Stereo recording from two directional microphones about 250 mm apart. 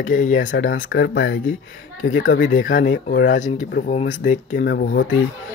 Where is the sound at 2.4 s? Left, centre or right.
Left.